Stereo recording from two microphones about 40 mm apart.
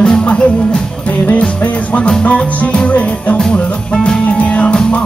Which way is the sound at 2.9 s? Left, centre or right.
Left.